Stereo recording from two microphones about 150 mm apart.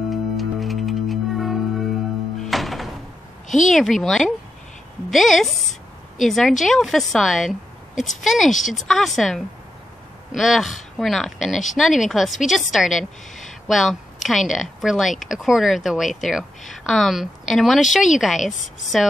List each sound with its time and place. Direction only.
0.1 s music: centre (ahead or behind)
3.4 s a woman's voice: 55° left (ahead or behind)
3.7 s a woman's voice: centre (ahead or behind)